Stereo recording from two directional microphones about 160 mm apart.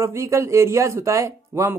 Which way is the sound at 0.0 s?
15° right (ahead or behind).